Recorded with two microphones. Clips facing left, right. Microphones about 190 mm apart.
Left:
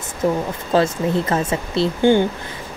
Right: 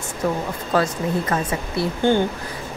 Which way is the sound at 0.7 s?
25° left (ahead or behind).